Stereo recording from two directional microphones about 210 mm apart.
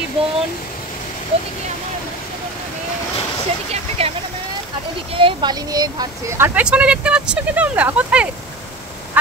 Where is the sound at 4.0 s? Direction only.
30° right (ahead or behind).